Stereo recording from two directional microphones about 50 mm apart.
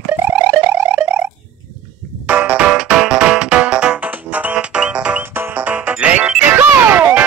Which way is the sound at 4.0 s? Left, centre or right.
Right.